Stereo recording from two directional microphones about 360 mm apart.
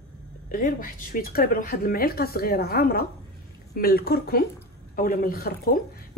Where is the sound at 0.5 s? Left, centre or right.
Left.